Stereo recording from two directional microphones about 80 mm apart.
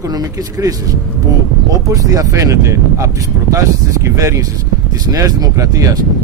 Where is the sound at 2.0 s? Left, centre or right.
Right.